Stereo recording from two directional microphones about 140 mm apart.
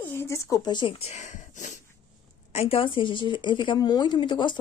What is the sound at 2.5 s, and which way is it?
Speech, 50° left (ahead or behind).